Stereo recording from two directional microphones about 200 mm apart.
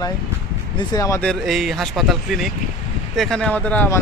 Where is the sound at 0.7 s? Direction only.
20° left (ahead or behind).